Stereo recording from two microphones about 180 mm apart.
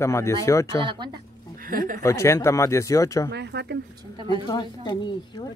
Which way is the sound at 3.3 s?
70° right (ahead or behind).